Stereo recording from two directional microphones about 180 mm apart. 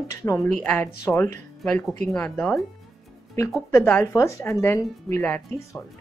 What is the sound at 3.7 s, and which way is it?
Speech, 15° left (ahead or behind).